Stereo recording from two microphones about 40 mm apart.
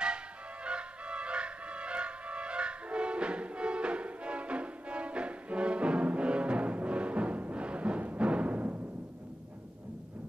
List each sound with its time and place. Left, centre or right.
0.7 s music: right